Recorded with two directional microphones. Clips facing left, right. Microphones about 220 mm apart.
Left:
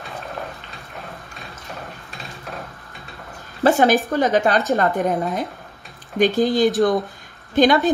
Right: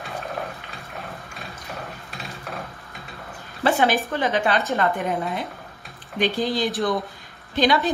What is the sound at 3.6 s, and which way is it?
A woman's voice, 45° left (ahead or behind).